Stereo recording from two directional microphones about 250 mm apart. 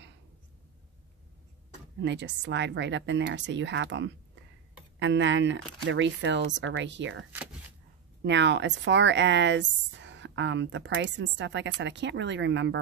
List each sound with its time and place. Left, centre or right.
2.0 s a woman's voice: right